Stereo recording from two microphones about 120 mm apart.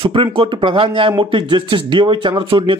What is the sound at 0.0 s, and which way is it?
Speech, 45° right (ahead or behind).